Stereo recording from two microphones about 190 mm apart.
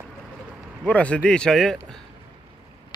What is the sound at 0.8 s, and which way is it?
Speech, 5° left (ahead or behind).